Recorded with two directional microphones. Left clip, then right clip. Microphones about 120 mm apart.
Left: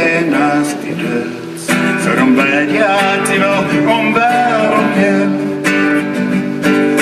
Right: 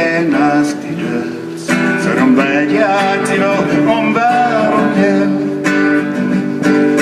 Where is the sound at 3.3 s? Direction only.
Centre (ahead or behind).